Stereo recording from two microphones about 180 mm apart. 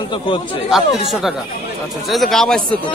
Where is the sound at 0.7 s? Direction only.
Centre (ahead or behind).